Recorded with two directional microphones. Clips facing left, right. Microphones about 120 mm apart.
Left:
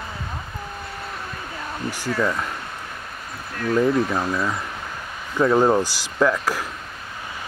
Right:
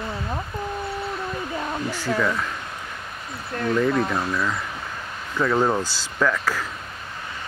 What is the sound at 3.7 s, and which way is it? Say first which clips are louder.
Speech: left 2 dB; 10° left (ahead or behind).